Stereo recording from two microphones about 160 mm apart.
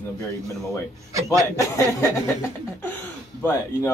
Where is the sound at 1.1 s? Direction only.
20° right (ahead or behind).